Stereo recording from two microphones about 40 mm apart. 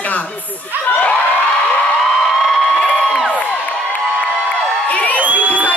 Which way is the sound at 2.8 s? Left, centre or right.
Centre.